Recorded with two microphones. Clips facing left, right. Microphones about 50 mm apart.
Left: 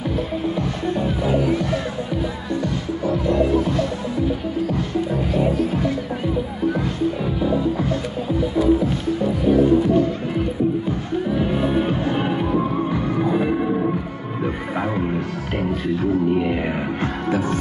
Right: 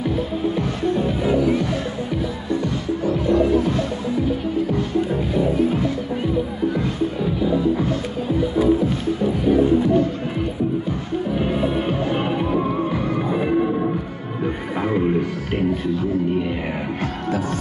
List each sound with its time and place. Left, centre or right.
13.2 s music: centre
17.0 s music: left